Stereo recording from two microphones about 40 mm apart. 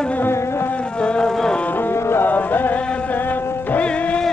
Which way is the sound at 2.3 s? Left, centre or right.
Left.